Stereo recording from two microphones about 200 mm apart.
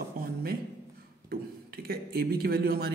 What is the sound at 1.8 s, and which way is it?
A man's voice, 50° right (ahead or behind).